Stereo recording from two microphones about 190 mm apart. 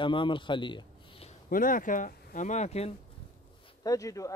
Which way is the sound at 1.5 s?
45° left (ahead or behind).